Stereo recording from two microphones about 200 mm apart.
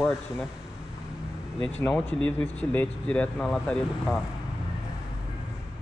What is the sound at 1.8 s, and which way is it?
Speech, 5° left (ahead or behind).